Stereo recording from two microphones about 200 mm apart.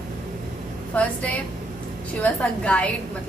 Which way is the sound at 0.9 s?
5° left (ahead or behind).